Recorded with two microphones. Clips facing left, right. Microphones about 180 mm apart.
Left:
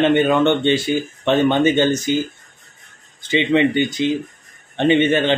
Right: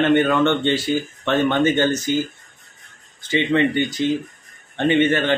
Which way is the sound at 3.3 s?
20° left (ahead or behind).